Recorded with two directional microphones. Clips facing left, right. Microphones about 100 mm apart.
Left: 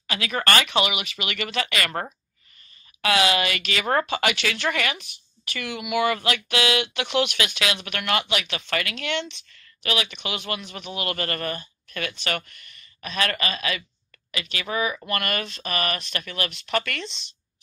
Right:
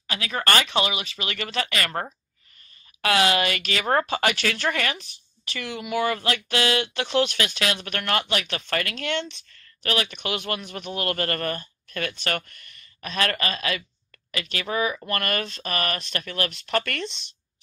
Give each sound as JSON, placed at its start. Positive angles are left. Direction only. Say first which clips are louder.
{"t": 0.0, "sound": "speech", "louder": "left 1 dB", "side_deg": -25}
{"t": 3.0, "sound": "speech", "louder": "even", "side_deg": -45}
{"t": 10.8, "sound": "a man's voice", "louder": "right 2 dB", "side_deg": 5}
{"t": 11.1, "sound": "speech", "louder": "right 2 dB", "side_deg": -45}